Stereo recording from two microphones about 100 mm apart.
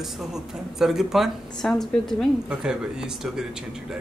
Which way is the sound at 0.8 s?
5° right (ahead or behind).